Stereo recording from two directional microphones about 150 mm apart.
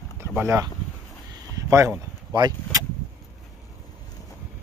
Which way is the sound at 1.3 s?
25° right (ahead or behind).